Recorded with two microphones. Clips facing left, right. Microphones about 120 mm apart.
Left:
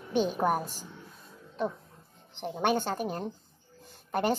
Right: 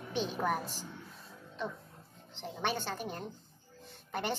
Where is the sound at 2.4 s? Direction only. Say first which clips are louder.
Left 7 dB; 50° left (ahead or behind).